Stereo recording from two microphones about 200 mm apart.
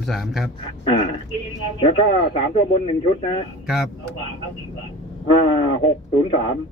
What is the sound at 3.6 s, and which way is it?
Speech, centre (ahead or behind).